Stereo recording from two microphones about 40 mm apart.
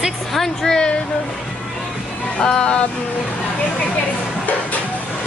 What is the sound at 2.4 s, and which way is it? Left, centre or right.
Music, centre.